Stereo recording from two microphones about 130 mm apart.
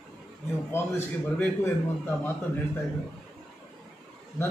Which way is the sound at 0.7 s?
20° left (ahead or behind).